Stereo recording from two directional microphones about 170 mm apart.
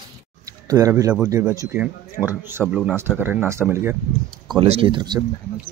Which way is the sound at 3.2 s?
10° right (ahead or behind).